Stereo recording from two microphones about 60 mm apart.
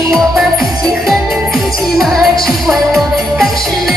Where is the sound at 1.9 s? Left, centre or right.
Centre.